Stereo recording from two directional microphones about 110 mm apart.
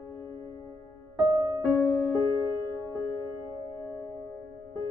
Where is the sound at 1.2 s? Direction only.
35° right (ahead or behind).